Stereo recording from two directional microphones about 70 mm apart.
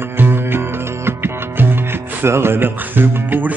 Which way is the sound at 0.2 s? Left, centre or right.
Right.